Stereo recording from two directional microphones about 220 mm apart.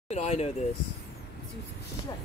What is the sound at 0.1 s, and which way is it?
Speech, 30° left (ahead or behind).